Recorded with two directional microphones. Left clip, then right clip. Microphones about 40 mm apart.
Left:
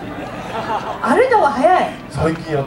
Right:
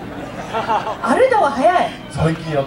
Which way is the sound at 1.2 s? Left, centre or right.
Centre.